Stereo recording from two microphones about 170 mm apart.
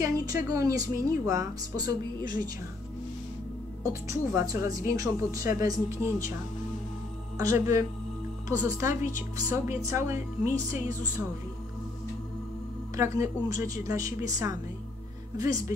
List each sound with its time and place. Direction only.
0.0 s a woman's voice: 20° right (ahead or behind)
3.8 s a woman's voice: 15° right (ahead or behind)
7.3 s a woman's voice: 15° right (ahead or behind)
12.9 s a woman's voice: 15° right (ahead or behind)